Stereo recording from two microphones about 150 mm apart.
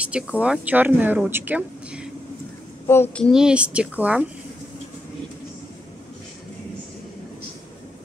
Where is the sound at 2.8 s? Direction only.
15° left (ahead or behind).